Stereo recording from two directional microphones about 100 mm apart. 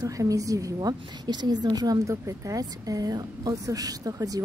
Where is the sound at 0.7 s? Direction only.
45° right (ahead or behind).